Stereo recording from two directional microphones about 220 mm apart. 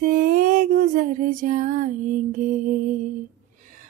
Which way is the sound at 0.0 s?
40° right (ahead or behind).